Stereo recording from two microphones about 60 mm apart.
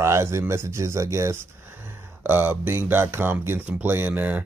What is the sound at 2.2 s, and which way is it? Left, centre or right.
Speech, right.